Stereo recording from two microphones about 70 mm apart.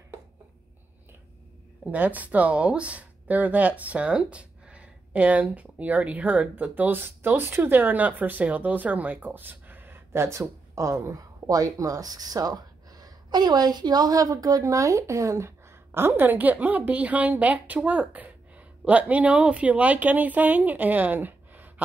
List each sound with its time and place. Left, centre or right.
1.9 s speech: right